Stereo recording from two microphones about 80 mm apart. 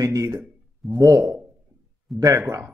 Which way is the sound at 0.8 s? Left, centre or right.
Centre.